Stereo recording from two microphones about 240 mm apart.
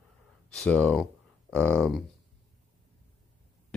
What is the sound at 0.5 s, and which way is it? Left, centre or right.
Speech, centre.